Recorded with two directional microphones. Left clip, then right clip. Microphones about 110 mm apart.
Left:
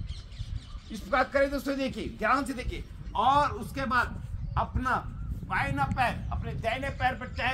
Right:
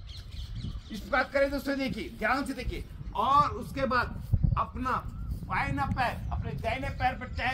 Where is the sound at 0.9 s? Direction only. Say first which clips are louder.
Left 2 dB; 5° left (ahead or behind).